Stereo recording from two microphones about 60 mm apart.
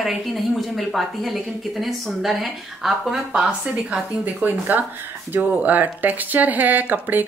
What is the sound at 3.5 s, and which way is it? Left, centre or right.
A woman's voice, right.